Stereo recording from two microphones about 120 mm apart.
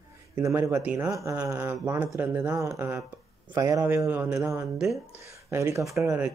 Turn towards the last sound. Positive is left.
turn(degrees=-25)  # may be behind; listen again after turning